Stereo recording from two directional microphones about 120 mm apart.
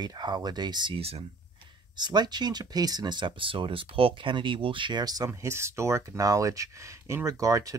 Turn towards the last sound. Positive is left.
turn(degrees=-30)  # may be behind; listen again after turning